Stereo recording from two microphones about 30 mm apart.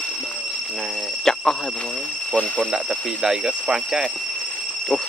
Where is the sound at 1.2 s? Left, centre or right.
Centre.